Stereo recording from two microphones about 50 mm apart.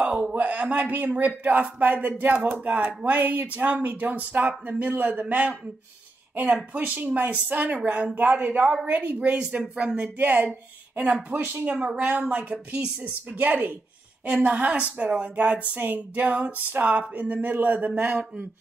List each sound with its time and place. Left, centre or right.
0.0 s speech: right
7.2 s speech: right
10.1 s speech: right
11.7 s speech: centre
12.0 s speech: right